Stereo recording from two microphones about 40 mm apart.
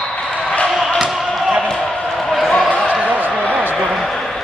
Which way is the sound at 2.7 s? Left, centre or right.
Left.